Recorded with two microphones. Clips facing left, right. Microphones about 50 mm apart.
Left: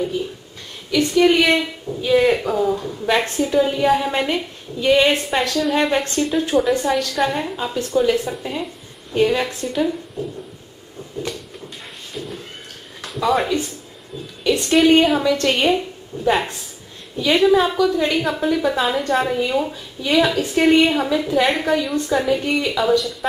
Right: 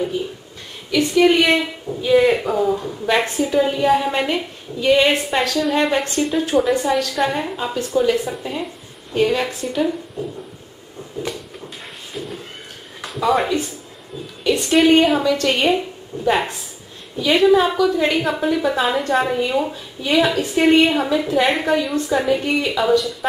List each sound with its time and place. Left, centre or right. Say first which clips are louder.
0.9 s a woman's voice: even; centre
11.2 s a sound: right 1 dB; centre
13.0 s a woman's voice: right 1 dB; centre